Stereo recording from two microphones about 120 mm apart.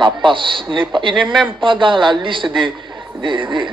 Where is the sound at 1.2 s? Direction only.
Centre (ahead or behind).